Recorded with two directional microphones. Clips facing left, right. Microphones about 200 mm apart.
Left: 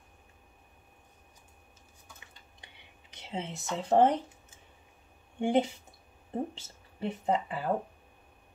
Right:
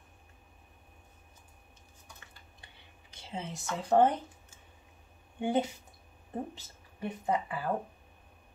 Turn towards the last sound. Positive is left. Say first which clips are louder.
# left 2 dB
turn(degrees=25)  # may be behind; listen again after turning